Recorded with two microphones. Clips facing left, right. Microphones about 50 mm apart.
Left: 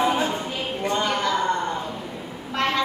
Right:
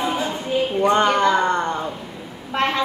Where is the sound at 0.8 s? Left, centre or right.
Right.